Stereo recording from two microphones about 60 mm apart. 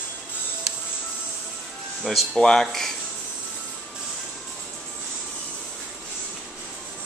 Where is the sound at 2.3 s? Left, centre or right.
Centre.